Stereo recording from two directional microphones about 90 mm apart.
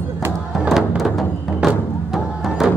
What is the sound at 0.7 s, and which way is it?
Music, centre (ahead or behind).